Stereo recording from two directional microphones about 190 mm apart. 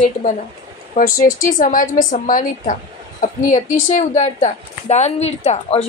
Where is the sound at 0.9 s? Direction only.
45° left (ahead or behind).